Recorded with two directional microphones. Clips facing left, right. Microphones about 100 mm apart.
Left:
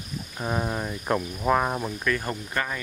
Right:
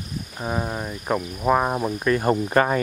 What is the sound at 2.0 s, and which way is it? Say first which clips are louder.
Cricket: right 7 dB; 25° right (ahead or behind).